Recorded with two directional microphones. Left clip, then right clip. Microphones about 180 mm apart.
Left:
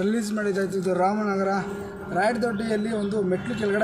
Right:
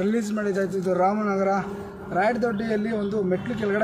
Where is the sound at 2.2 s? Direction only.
5° left (ahead or behind).